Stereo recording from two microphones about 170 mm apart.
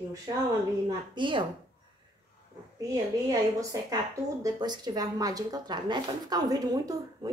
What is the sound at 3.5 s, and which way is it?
Speech, 20° right (ahead or behind).